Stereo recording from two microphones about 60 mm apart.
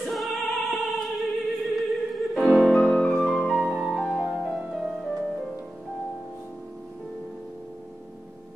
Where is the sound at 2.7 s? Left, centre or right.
Centre.